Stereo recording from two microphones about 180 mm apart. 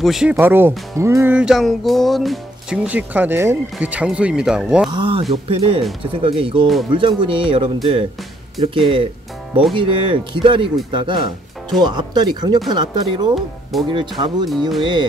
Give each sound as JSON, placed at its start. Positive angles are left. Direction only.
{"t": 0.0, "sound": "speech", "side_deg": -5}
{"t": 4.9, "sound": "speech", "side_deg": -30}
{"t": 13.3, "sound": "speech", "side_deg": 0}
{"t": 13.8, "sound": "speech", "side_deg": -25}